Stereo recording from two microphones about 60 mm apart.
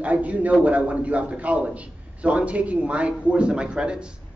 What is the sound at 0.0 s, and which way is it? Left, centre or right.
A man's voice, right.